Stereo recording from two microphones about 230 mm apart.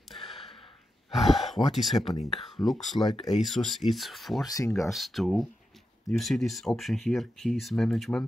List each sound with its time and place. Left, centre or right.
1.1 s speech: centre
2.1 s speech: left
2.5 s speech: centre
4.5 s speech: centre
4.8 s speech: centre